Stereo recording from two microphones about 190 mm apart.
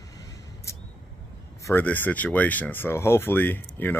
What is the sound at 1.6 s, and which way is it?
Speech, 10° left (ahead or behind).